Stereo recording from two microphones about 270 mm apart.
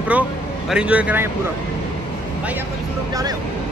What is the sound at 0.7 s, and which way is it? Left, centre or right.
Speech, centre.